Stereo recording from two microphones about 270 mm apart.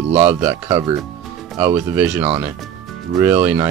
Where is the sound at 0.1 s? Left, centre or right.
Right.